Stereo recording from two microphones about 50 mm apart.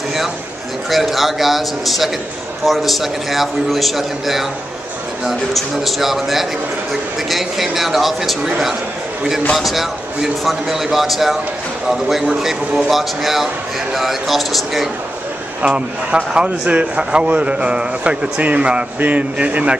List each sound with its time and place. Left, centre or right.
0.8 s a man's voice: centre
5.5 s a man's voice: centre
15.6 s a man's voice: right